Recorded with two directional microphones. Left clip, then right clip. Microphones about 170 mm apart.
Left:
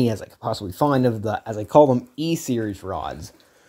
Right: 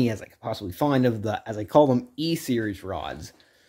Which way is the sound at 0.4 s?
Centre (ahead or behind).